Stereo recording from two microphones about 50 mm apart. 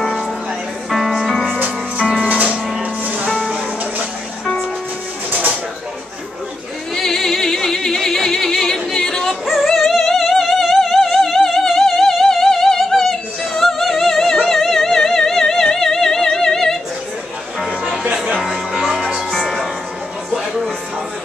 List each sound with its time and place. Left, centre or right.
0.8 s music: centre
2.2 s music: right
3.3 s music: centre
7.0 s music: centre
9.5 s music: centre
18.1 s music: centre
18.9 s music: centre
19.3 s music: centre